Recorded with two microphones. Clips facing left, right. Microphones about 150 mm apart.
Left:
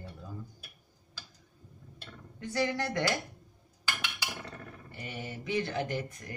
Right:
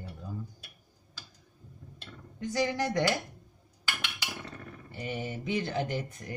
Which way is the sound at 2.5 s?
20° right (ahead or behind).